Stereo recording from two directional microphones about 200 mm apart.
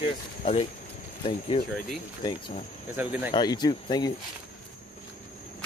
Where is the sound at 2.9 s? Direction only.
10° right (ahead or behind).